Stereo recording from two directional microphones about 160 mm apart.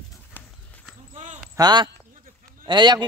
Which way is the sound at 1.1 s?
45° right (ahead or behind).